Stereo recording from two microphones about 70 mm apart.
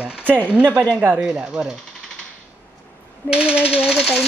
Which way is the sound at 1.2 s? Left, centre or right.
Centre.